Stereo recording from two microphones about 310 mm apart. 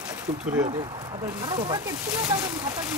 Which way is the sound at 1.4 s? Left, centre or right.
Centre.